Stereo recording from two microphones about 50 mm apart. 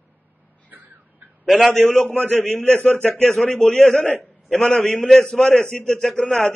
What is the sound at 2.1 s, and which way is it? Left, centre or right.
Speech, left.